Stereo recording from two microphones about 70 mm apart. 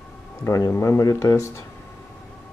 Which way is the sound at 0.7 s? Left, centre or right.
Left.